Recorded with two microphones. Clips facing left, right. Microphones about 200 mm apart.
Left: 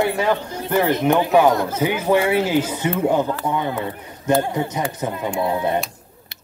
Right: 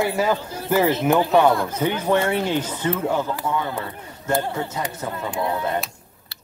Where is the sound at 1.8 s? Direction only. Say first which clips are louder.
Left 3 dB; 10° left (ahead or behind).